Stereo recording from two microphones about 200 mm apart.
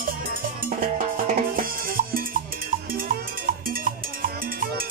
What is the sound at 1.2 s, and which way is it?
Cowbell, 45° right (ahead or behind).